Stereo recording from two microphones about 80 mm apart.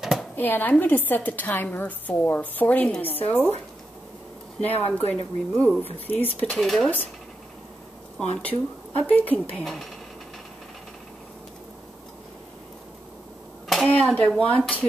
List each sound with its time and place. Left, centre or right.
0.0 s a sound: centre
0.4 s a woman's voice: left
4.6 s a woman's voice: centre
5.1 s speech: centre
5.8 s a woman's voice: left
6.5 s speech: centre
8.2 s a woman's voice: centre
13.7 s a sound: centre
14.1 s speech: centre